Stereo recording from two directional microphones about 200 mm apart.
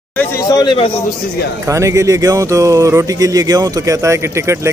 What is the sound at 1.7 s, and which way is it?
Speech, 15° right (ahead or behind).